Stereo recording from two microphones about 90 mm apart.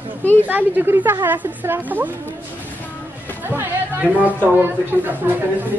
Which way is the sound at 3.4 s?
20° right (ahead or behind).